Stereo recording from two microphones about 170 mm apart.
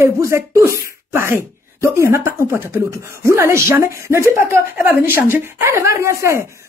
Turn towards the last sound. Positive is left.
turn(degrees=-15)  # may be behind; listen again after turning